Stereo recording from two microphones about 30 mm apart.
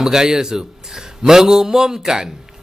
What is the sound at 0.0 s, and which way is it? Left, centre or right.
A man's voice, centre.